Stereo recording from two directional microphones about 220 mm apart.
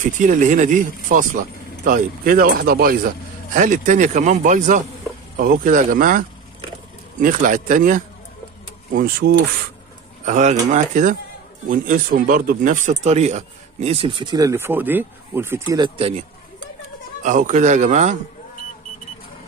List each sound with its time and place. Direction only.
0.0 s speech: 35° right (ahead or behind)
17.2 s speech: 35° right (ahead or behind)